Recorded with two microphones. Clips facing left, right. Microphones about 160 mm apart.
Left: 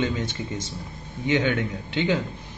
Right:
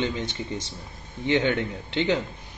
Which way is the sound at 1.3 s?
20° right (ahead or behind).